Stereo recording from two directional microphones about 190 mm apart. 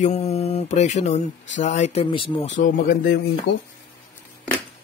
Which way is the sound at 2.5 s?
45° left (ahead or behind).